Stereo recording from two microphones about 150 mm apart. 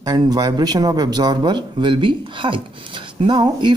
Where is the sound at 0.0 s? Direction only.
25° right (ahead or behind).